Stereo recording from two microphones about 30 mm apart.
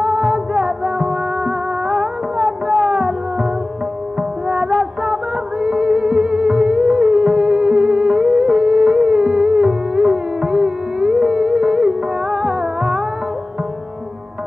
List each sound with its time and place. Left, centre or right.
0.0 s music: centre
4.2 s music: centre
5.0 s a sound: centre
5.7 s music: centre